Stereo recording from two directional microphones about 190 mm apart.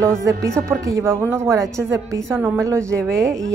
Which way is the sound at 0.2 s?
15° right (ahead or behind).